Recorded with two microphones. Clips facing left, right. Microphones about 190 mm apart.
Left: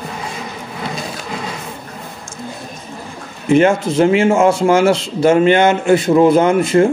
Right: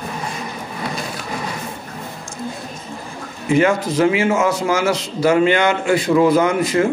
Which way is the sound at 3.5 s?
25° left (ahead or behind).